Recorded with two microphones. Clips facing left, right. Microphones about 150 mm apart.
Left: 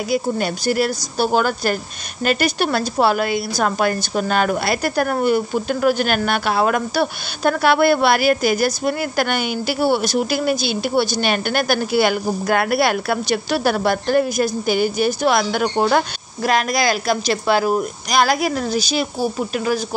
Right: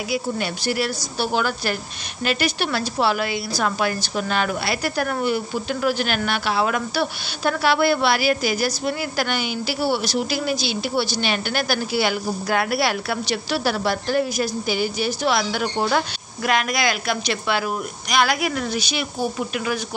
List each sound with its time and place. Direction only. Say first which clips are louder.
0.1 s a woman's voice: left 5 dB; 45° left (ahead or behind)
16.4 s a woman's voice: left 3 dB; 40° left (ahead or behind)